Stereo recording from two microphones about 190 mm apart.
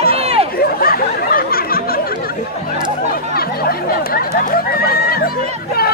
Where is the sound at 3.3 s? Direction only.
50° left (ahead or behind).